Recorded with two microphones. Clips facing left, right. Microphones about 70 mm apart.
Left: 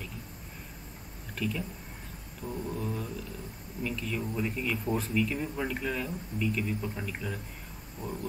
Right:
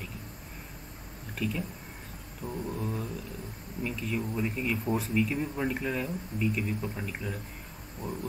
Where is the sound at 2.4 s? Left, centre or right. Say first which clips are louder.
Even; centre.